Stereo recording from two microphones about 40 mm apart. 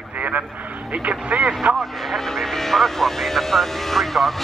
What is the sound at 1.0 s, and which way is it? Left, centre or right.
Speech, right.